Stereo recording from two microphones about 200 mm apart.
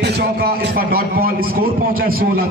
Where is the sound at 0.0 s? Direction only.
55° right (ahead or behind).